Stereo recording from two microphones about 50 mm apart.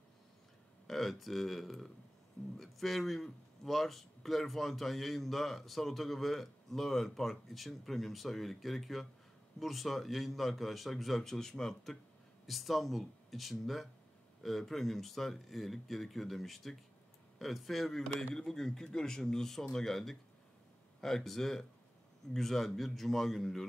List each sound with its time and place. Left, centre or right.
0.8 s a man's voice: centre